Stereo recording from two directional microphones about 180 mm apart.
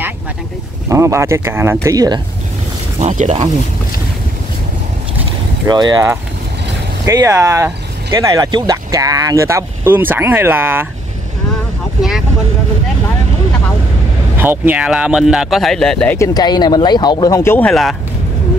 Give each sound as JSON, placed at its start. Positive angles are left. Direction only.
{"t": 0.8, "sound": "speech", "side_deg": -15}
{"t": 3.0, "sound": "speech", "side_deg": -40}
{"t": 5.7, "sound": "speech", "side_deg": -20}
{"t": 14.3, "sound": "speech", "side_deg": -10}
{"t": 16.3, "sound": "speech", "side_deg": 25}